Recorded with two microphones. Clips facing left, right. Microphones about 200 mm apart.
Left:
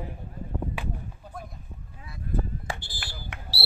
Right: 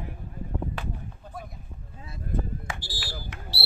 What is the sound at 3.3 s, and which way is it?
Basketball bounce, 60° left (ahead or behind).